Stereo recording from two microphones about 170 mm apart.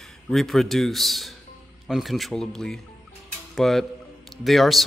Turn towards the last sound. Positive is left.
turn(degrees=0)  # may be behind; listen again after turning